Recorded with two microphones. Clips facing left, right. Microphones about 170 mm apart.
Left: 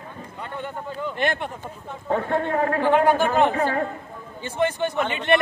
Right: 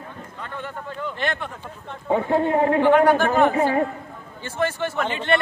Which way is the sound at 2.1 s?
15° right (ahead or behind).